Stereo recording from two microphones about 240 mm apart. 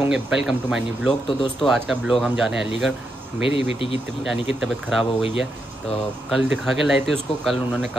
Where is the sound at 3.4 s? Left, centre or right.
Right.